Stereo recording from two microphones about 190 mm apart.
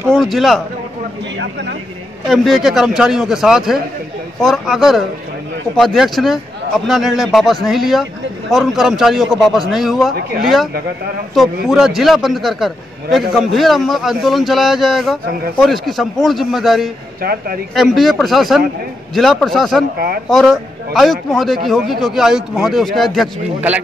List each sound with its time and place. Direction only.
0.1 s a man's voice: centre (ahead or behind)
1.4 s speech: 65° right (ahead or behind)
2.2 s a man's voice: centre (ahead or behind)
17.2 s speech: 50° right (ahead or behind)
17.7 s a man's voice: centre (ahead or behind)